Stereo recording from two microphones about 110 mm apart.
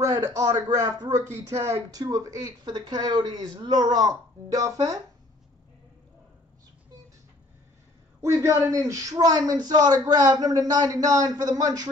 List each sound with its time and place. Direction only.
0.0 s speech: 25° right (ahead or behind)
8.2 s speech: 25° right (ahead or behind)